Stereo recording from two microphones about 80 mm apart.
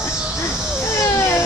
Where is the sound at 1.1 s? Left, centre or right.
Left.